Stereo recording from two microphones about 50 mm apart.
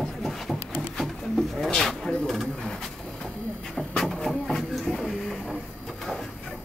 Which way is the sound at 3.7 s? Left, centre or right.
Centre.